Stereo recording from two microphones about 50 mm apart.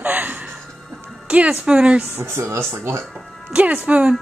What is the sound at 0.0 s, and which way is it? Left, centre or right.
Music, right.